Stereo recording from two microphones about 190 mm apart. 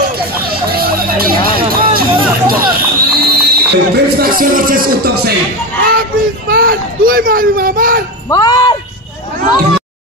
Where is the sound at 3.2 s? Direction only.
55° right (ahead or behind).